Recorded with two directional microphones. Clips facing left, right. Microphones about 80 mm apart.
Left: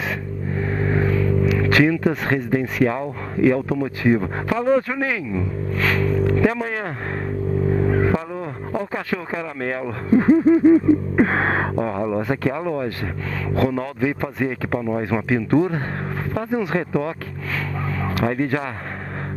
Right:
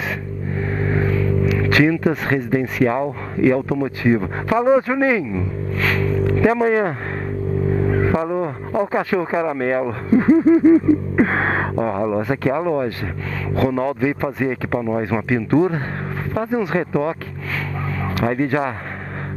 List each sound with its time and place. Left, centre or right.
1.7 s speech: right
5.8 s a sound: right
7.9 s speech: right